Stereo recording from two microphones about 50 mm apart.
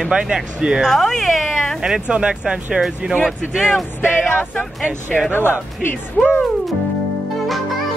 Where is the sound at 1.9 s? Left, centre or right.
Centre.